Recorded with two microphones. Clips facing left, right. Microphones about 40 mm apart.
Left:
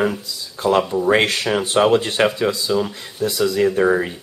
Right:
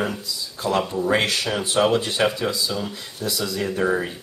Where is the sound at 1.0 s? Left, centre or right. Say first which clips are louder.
Left 4 dB; left.